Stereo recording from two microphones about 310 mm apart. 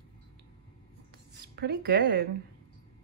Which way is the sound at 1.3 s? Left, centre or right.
Right.